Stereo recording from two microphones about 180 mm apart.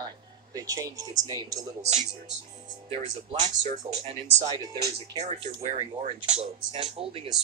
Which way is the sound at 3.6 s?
40° right (ahead or behind).